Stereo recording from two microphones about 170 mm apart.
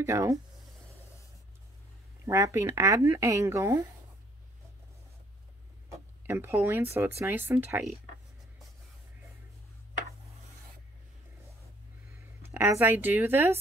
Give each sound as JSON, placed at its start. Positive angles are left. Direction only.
{"t": 0.0, "sound": "speech", "side_deg": -20}
{"t": 2.2, "sound": "speech", "side_deg": -20}
{"t": 6.2, "sound": "speech", "side_deg": -15}
{"t": 12.4, "sound": "speech", "side_deg": -15}